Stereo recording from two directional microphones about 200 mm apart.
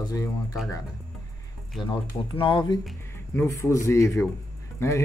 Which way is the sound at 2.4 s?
20° left (ahead or behind).